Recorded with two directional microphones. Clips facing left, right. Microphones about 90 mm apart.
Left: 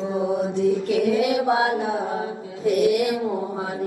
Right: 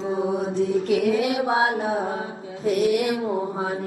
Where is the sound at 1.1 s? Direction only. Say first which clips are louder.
Left 2 dB; 40° right (ahead or behind).